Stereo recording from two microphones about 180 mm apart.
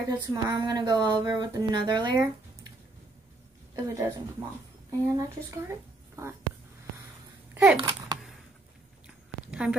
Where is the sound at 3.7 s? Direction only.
20° right (ahead or behind).